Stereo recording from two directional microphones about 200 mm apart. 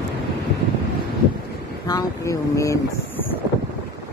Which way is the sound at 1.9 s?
15° left (ahead or behind).